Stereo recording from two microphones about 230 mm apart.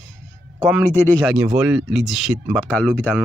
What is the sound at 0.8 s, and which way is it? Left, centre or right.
Speech, centre.